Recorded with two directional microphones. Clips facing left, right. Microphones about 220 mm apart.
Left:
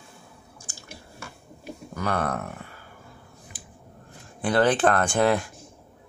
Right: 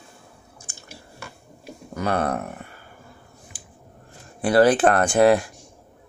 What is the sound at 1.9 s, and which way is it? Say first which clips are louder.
Speech: right 4 dB; 20° right (ahead or behind).